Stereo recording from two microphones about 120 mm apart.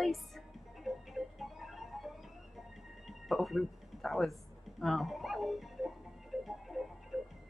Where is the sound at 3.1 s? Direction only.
Centre (ahead or behind).